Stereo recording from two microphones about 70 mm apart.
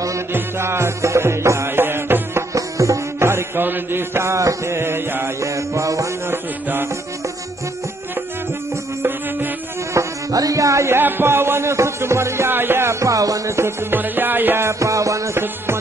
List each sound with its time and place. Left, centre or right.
0.3 s music: right
2.5 s music: right
5.4 s music: right
6.3 s music: right
9.9 s music: right
11.0 s music: right
15.4 s music: right